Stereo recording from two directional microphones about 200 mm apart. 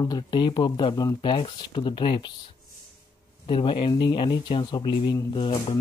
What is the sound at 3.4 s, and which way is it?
Speech, 25° left (ahead or behind).